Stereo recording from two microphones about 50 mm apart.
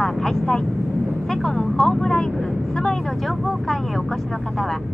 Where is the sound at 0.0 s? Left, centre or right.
Centre.